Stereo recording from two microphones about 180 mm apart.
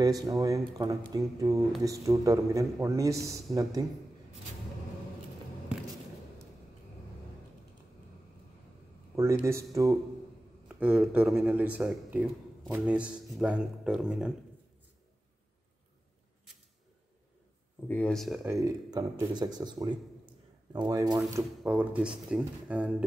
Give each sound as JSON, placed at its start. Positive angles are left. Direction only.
{"t": 0.0, "sound": "speech", "side_deg": -20}
{"t": 9.1, "sound": "a man's voice", "side_deg": -15}
{"t": 17.8, "sound": "speech", "side_deg": 5}
{"t": 18.4, "sound": "speech", "side_deg": -15}